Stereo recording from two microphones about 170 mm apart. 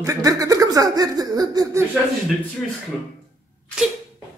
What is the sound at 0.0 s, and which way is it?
Speech, 20° right (ahead or behind).